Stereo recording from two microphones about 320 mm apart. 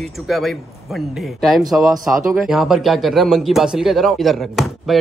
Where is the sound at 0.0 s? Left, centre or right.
Centre.